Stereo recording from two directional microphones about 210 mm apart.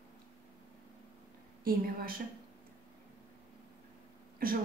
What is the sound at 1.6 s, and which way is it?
Speech, 45° right (ahead or behind).